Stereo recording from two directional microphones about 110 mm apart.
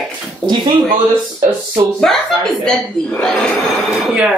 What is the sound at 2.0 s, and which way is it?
Speech, 5° left (ahead or behind).